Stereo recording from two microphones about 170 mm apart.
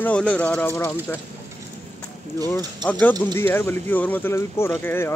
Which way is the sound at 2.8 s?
10° left (ahead or behind).